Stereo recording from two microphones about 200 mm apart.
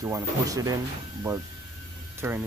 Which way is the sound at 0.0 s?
15° right (ahead or behind).